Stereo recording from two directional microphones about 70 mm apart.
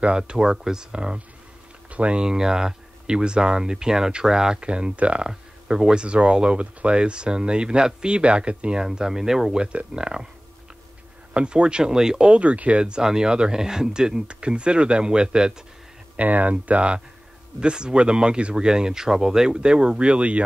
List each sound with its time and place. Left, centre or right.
0.0 s speech: centre
11.3 s speech: centre
16.2 s speech: right